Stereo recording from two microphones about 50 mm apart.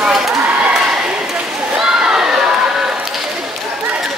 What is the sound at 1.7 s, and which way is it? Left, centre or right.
Crowd, centre.